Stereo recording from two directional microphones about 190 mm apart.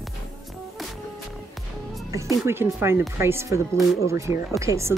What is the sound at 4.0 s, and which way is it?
Speech, 15° right (ahead or behind).